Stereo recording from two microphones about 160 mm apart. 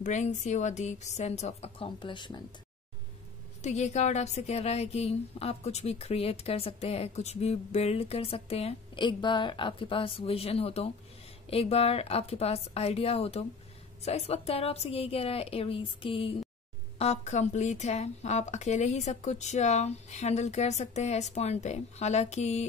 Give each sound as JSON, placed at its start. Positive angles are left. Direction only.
{"t": 0.0, "sound": "speech", "side_deg": 45}
{"t": 3.6, "sound": "a woman's voice", "side_deg": 45}
{"t": 17.0, "sound": "speech", "side_deg": 45}